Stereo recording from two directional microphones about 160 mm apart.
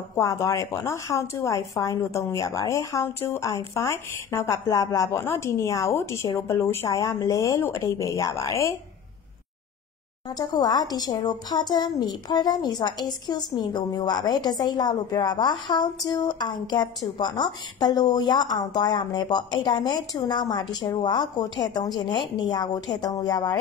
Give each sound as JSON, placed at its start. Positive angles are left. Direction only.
{"t": 0.1, "sound": "a woman's voice", "side_deg": 20}
{"t": 10.3, "sound": "a woman's voice", "side_deg": 25}